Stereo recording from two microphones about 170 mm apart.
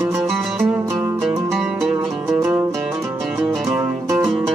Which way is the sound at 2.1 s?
Centre (ahead or behind).